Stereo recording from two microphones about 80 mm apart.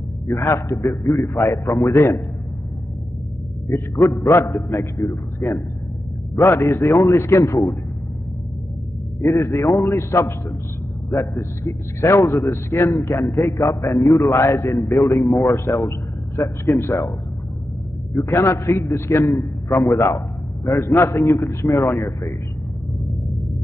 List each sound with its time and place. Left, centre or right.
0.3 s a man's voice: left
3.6 s a man's voice: left
9.2 s a man's voice: left
18.1 s a man's voice: left